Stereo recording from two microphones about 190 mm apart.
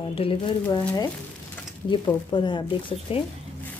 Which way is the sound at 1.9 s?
25° left (ahead or behind).